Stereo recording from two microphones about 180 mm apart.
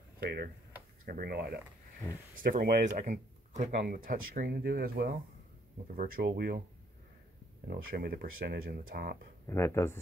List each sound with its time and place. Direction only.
0.2 s speech: 60° right (ahead or behind)
6.2 s speech: 60° right (ahead or behind)
7.7 s speech: 55° right (ahead or behind)
9.5 s speech: 15° left (ahead or behind)